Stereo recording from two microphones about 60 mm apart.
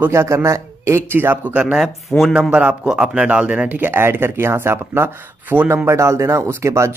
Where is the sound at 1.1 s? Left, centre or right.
Right.